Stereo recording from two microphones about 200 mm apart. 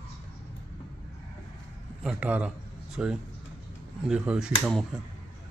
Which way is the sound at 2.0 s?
5° right (ahead or behind).